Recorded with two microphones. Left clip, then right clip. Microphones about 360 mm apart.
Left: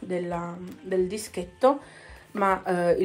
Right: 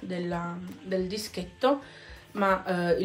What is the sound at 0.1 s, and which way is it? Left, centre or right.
Speech, centre.